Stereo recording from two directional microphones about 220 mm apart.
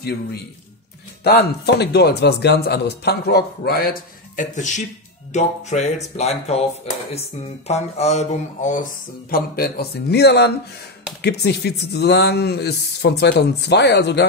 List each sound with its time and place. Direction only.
1.2 s speech: 50° left (ahead or behind)
4.4 s speech: 35° left (ahead or behind)
9.3 s speech: 45° left (ahead or behind)